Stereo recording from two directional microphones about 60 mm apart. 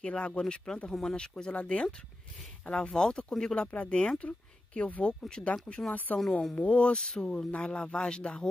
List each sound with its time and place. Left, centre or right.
0.0 s speech: centre